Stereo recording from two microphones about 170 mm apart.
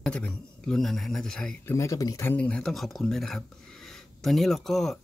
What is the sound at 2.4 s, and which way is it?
Speech, 5° left (ahead or behind).